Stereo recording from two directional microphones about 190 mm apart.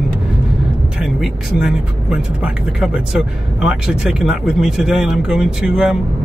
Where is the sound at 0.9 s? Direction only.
5° right (ahead or behind).